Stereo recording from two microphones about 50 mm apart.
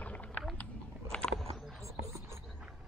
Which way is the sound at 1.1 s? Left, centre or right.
Left.